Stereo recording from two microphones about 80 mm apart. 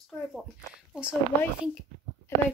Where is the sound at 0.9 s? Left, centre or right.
Centre.